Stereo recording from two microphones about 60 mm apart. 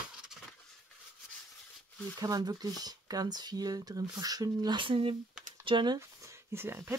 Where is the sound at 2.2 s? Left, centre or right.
Right.